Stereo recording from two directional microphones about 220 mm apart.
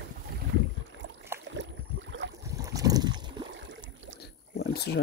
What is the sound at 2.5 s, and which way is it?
Boat, 15° right (ahead or behind).